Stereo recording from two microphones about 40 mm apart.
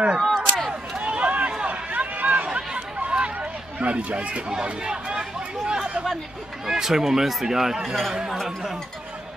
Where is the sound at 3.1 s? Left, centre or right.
Right.